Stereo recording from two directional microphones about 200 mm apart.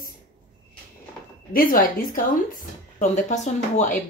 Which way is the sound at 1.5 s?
45° left (ahead or behind).